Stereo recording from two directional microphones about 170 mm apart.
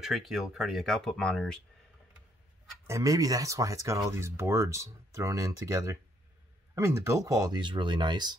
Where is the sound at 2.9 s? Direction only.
20° right (ahead or behind).